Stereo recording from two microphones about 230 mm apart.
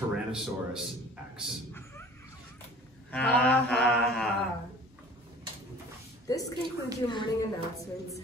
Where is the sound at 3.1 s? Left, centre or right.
Centre.